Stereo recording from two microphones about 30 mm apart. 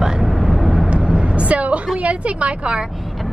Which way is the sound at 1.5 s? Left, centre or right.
Right.